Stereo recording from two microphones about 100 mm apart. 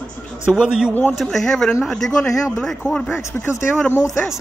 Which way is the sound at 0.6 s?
10° right (ahead or behind).